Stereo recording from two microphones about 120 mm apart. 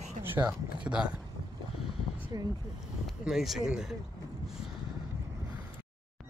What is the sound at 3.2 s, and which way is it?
Speech, 5° right (ahead or behind).